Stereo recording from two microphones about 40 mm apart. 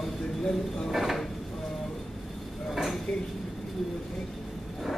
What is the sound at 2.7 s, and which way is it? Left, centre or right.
Dishes, centre.